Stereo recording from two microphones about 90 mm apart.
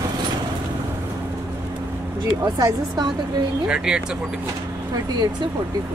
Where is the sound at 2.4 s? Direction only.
45° right (ahead or behind).